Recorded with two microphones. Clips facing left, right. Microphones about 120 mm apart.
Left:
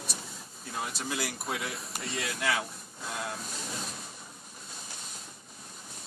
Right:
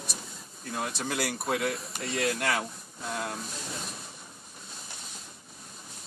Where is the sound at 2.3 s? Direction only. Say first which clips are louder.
Right 1 dB; 55° right (ahead or behind).